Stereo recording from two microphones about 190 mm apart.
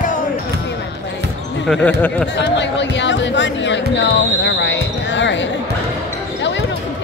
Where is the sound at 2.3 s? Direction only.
65° left (ahead or behind).